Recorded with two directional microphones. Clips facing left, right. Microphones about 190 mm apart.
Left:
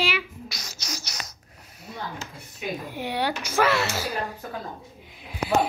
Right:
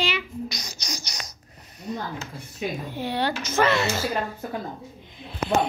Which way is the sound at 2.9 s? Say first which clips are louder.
Even; 15° left (ahead or behind).